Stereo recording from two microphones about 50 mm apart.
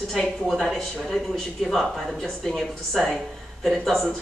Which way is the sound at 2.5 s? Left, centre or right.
Centre.